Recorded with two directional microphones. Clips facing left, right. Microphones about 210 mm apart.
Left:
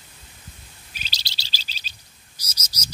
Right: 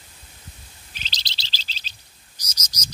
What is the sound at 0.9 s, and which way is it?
Bird, 10° left (ahead or behind).